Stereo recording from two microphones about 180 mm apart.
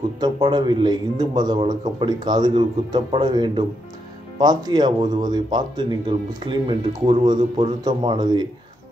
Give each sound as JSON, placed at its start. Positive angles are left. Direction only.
{"t": 0.2, "sound": "a man's voice", "side_deg": -25}